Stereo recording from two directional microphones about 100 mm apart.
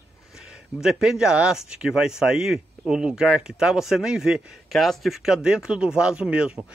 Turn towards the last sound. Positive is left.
turn(degrees=-10)  # may be behind; listen again after turning